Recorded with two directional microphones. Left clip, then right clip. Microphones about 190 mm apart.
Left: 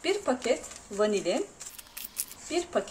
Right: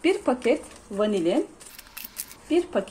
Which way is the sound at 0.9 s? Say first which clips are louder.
Right 3 dB; 15° right (ahead or behind).